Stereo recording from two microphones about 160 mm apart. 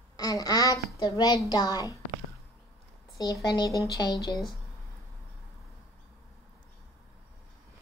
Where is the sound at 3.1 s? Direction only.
25° left (ahead or behind).